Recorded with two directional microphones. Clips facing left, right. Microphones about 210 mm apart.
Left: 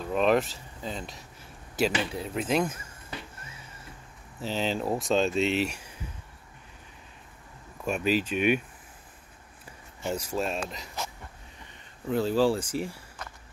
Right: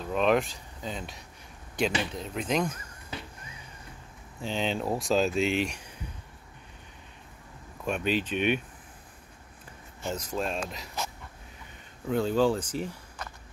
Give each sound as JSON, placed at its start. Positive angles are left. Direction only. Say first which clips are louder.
{"t": 0.0, "sound": "speech", "louder": "left 1 dB", "side_deg": 0}
{"t": 4.4, "sound": "speech", "louder": "left 1 dB", "side_deg": 5}
{"t": 7.8, "sound": "speech", "louder": "left 2 dB", "side_deg": 5}
{"t": 10.1, "sound": "speech", "louder": "left 1 dB", "side_deg": 5}
{"t": 12.1, "sound": "speech", "louder": "left 1 dB", "side_deg": 5}